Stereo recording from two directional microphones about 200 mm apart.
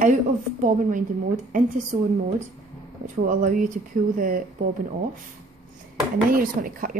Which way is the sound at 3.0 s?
40° right (ahead or behind).